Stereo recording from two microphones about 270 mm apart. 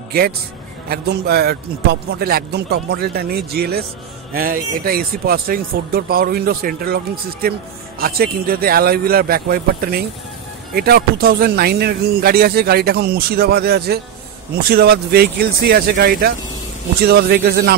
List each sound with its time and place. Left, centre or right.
0.1 s speech: right